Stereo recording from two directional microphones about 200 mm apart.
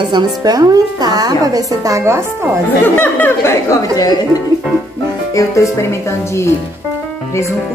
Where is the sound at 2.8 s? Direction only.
10° left (ahead or behind).